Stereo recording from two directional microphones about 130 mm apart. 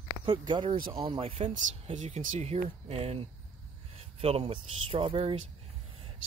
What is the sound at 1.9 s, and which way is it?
Speech, 70° right (ahead or behind).